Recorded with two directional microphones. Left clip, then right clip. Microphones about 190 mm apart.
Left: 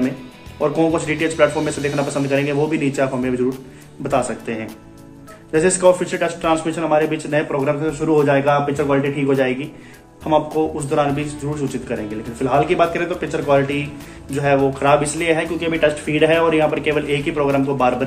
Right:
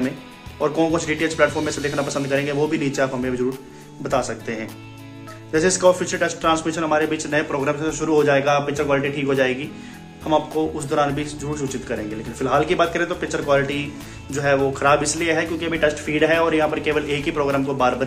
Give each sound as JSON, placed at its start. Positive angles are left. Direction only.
{"t": 0.6, "sound": "speech", "side_deg": -20}
{"t": 1.5, "sound": "speech", "side_deg": 0}
{"t": 2.0, "sound": "speech", "side_deg": -20}